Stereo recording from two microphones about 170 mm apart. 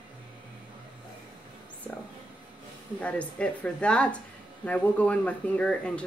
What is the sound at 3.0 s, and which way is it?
Speech, 10° left (ahead or behind).